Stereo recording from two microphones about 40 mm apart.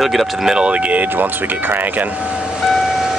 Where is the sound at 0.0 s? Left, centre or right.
Centre.